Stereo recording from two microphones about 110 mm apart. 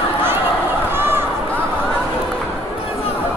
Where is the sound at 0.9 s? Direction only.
20° right (ahead or behind).